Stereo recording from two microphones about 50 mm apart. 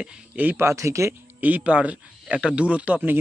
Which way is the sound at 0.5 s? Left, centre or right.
Right.